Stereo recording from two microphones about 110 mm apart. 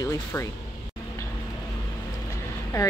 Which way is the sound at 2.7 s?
30° left (ahead or behind).